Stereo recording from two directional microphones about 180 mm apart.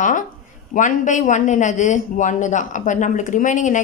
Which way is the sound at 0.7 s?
45° left (ahead or behind).